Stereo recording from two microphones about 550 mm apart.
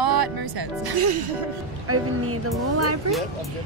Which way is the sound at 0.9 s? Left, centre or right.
Right.